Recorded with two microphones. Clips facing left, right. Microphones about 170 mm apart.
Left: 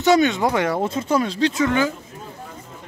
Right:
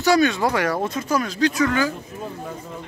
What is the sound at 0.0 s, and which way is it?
Speech, 20° left (ahead or behind).